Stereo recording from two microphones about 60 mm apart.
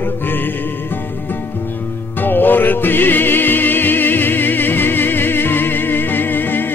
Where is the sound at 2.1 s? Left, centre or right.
Left.